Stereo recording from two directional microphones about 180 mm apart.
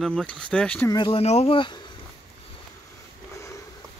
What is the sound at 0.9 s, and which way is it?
Speech, 25° left (ahead or behind).